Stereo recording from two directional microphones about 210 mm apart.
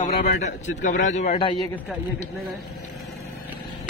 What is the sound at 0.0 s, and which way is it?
A man's voice, 35° left (ahead or behind).